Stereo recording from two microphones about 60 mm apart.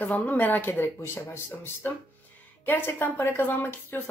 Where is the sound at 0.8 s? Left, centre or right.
Left.